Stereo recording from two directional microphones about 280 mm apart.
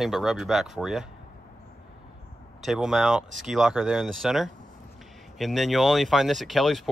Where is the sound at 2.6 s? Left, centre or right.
Centre.